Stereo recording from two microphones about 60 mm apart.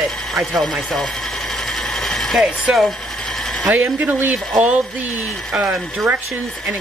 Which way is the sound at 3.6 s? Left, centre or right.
Right.